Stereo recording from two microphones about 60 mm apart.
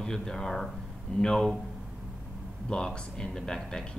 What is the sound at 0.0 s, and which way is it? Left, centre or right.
Speech, centre.